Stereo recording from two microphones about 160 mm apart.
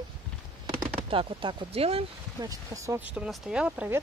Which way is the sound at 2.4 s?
20° right (ahead or behind).